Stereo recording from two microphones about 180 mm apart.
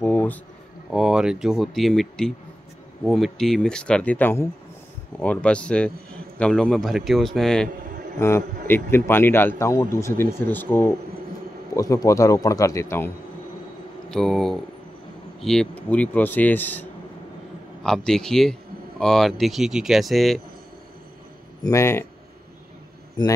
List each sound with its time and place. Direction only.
0.0 s a sound: 10° left (ahead or behind)
0.9 s speech: 5° right (ahead or behind)
8.2 s a man's voice: 15° left (ahead or behind)
14.1 s a man's voice: centre (ahead or behind)
17.8 s speech: 5° left (ahead or behind)
21.6 s a man's voice: 15° left (ahead or behind)